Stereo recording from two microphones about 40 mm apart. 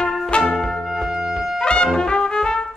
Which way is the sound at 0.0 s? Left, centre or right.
Left.